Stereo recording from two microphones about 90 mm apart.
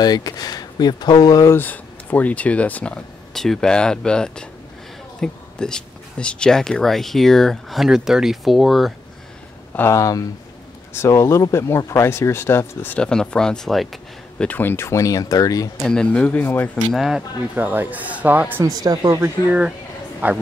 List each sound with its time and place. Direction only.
0.0 s speech: 45° left (ahead or behind)
1.5 s speech: 20° left (ahead or behind); by 8.9 s centre (ahead or behind)
9.8 s speech: 35° left (ahead or behind)
12.9 s speech: 10° left (ahead or behind)
14.4 s speech: 20° left (ahead or behind); by 15.7 s 40° left (ahead or behind)
15.8 s speech: 10° left (ahead or behind)
16.9 s speech: 5° right (ahead or behind)
17.6 s speech: 20° right (ahead or behind)
18.8 s speech: 45° right (ahead or behind)
20.2 s speech: 20° right (ahead or behind)